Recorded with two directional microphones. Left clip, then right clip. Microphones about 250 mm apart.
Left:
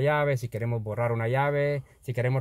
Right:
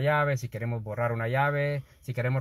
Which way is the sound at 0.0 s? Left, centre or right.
Left.